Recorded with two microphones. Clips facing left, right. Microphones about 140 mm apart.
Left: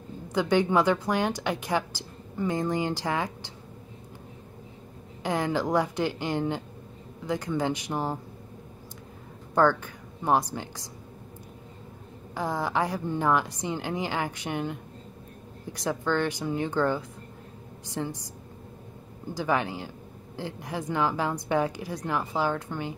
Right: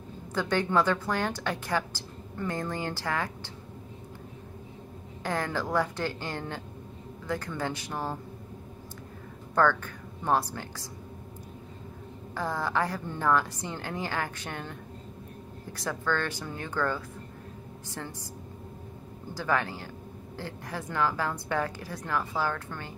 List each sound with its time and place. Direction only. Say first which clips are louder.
0.3 s a woman's voice: left 4 dB; 15° left (ahead or behind)
5.2 s a woman's voice: left 4 dB; 15° left (ahead or behind)
9.6 s a woman's voice: left 2 dB; 15° left (ahead or behind)
12.4 s a woman's voice: left 2 dB; 15° left (ahead or behind)
19.3 s a woman's voice: left 2 dB; 15° left (ahead or behind)